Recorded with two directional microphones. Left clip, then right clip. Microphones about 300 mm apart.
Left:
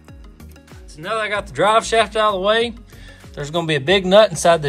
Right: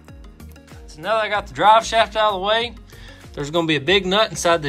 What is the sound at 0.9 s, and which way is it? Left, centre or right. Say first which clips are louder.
Speech: right 1 dB; centre.